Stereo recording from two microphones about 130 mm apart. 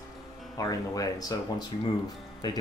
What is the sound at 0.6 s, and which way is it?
Speech, 25° left (ahead or behind).